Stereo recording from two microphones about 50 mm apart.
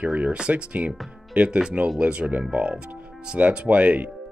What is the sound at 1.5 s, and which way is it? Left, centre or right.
Speech, centre.